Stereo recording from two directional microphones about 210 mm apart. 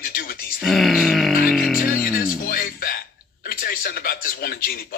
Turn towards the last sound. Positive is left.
turn(degrees=45)  # may be behind; listen again after turning